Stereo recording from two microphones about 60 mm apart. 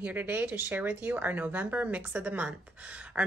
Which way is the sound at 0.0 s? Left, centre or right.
Right.